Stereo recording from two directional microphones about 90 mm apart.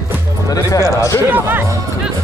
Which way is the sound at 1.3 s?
20° right (ahead or behind).